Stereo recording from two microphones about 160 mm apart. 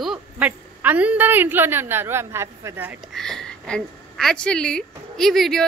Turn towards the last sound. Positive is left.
turn(degrees=0)  # may be behind; listen again after turning